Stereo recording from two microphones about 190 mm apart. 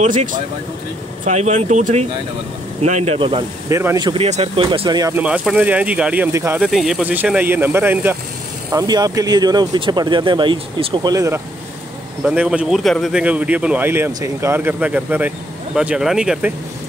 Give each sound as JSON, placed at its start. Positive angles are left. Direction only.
{"t": 1.2, "sound": "speech", "side_deg": -40}
{"t": 3.6, "sound": "speech", "side_deg": -15}
{"t": 4.1, "sound": "speech", "side_deg": -30}
{"t": 5.1, "sound": "speech", "side_deg": -5}
{"t": 12.2, "sound": "speech", "side_deg": -5}